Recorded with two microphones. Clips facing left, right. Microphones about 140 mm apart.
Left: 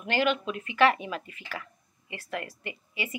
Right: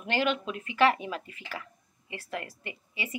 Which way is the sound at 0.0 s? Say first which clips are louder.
Left 2 dB; 30° right (ahead or behind).